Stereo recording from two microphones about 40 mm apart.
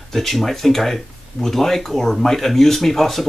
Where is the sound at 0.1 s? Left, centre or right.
Centre.